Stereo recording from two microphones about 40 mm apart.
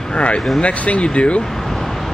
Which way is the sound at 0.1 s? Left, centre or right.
Left.